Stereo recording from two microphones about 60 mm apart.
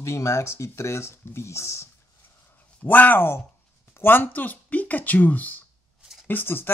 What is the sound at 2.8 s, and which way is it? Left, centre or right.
Speech, left.